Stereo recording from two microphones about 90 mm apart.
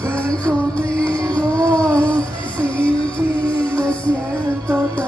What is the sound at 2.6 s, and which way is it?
Music, 75° left (ahead or behind).